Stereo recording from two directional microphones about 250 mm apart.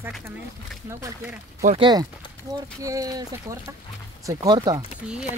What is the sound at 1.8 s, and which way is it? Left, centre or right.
Speech, centre.